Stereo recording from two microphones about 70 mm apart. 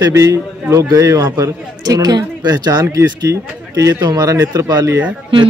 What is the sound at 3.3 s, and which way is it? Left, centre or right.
Speech, right.